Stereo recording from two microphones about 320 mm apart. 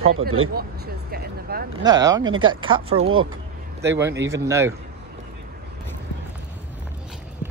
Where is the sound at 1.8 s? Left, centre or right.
Centre.